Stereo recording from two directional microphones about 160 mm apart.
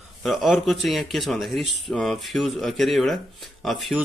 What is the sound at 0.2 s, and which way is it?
Speech, centre (ahead or behind).